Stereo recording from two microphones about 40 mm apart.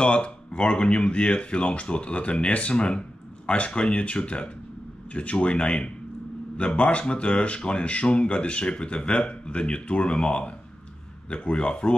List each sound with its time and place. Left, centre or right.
0.0 s speech: left